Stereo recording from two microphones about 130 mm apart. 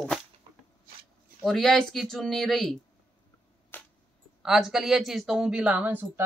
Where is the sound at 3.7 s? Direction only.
15° left (ahead or behind).